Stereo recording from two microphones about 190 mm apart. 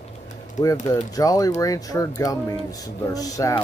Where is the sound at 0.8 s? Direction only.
20° left (ahead or behind).